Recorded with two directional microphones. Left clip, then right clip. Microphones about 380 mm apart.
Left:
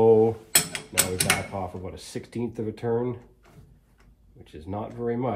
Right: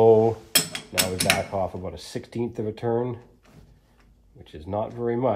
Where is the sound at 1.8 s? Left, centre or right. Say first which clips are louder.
Right 3 dB; right.